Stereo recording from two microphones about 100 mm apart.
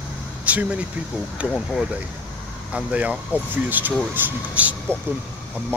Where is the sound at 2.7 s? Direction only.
10° right (ahead or behind).